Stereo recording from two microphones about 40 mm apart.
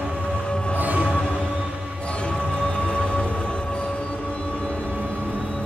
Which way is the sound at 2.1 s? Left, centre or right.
Left.